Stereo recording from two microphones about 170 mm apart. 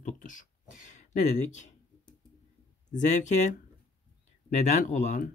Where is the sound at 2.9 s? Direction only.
45° left (ahead or behind).